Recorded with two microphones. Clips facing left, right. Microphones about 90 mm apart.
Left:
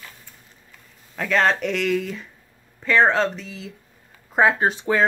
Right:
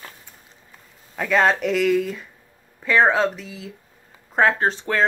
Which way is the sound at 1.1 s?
5° right (ahead or behind).